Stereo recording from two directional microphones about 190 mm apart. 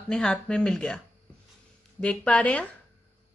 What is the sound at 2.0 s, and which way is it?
Speech, 5° left (ahead or behind).